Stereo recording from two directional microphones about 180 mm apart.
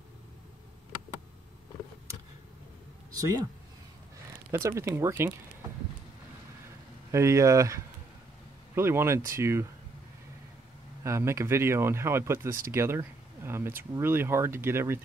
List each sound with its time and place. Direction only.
3.2 s speech: 20° right (ahead or behind)
4.5 s speech: 15° right (ahead or behind)
7.1 s speech: 15° right (ahead or behind)
11.1 s speech: 15° right (ahead or behind)